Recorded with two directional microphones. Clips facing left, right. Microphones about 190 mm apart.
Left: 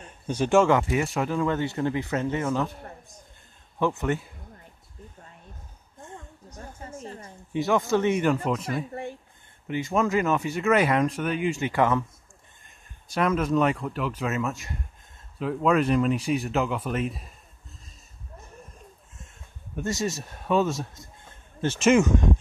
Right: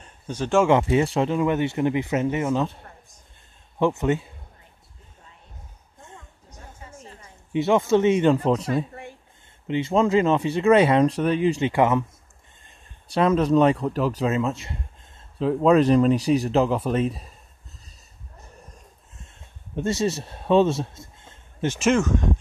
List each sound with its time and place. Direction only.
0.3 s speech: 10° left (ahead or behind)
0.7 s speech: 25° right (ahead or behind)
3.8 s speech: 20° right (ahead or behind)
7.5 s speech: 25° right (ahead or behind)
11.7 s speech: 20° right (ahead or behind)
13.1 s speech: 30° right (ahead or behind)
19.7 s speech: 30° right (ahead or behind)